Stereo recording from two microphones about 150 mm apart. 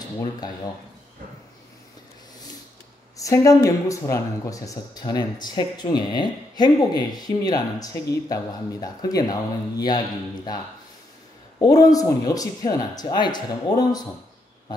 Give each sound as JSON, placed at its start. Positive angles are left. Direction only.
{"t": 3.2, "sound": "speech", "side_deg": 20}
{"t": 11.6, "sound": "speech", "side_deg": 25}